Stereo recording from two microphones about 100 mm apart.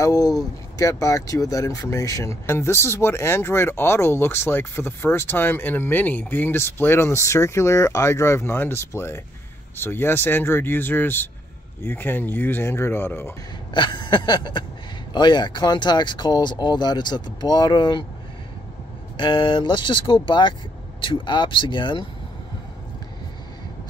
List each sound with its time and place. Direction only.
0.0 s speech: 35° left (ahead or behind)
13.7 s speech: 50° left (ahead or behind)
19.1 s speech: 50° left (ahead or behind)